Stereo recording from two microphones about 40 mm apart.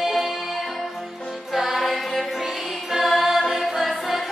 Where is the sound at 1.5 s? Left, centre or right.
Centre.